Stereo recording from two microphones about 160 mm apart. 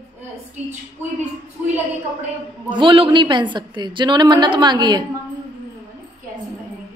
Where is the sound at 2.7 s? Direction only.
30° right (ahead or behind).